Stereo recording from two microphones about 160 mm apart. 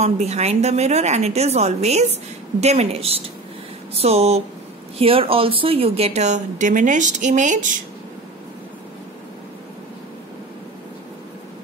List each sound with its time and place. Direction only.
0.0 s a woman's voice: 45° right (ahead or behind)